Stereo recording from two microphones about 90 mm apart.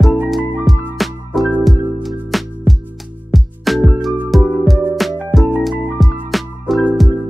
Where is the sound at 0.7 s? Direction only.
Centre (ahead or behind).